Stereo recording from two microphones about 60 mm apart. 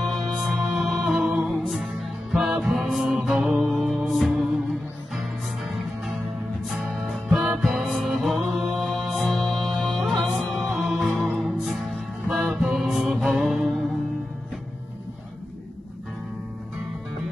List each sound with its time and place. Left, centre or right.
0.1 s music: centre